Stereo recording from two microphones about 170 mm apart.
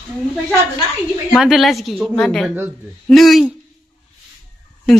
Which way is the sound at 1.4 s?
Centre (ahead or behind).